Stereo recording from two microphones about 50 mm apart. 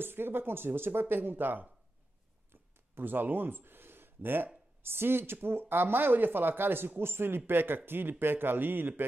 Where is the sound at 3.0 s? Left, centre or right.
Right.